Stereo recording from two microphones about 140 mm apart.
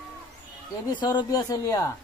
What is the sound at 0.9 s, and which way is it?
Speech, 30° left (ahead or behind).